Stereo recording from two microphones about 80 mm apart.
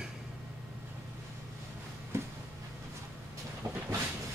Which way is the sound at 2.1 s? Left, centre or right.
Right.